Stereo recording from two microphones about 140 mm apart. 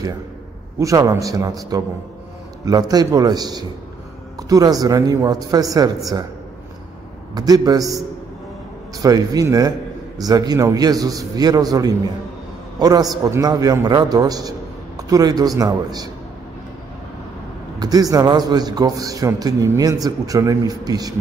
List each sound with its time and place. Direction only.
0.7 s a man's voice: 25° right (ahead or behind)
7.3 s a man's voice: 30° right (ahead or behind)
17.7 s a man's voice: 25° right (ahead or behind)